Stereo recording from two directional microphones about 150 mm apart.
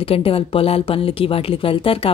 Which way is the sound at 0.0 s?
40° left (ahead or behind).